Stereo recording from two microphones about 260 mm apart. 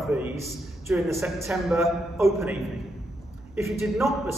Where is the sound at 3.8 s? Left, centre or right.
Centre.